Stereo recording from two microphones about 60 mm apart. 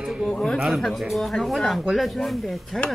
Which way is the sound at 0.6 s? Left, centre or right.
Centre.